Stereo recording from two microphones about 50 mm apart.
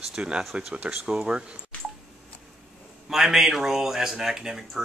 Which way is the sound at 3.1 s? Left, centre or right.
Centre.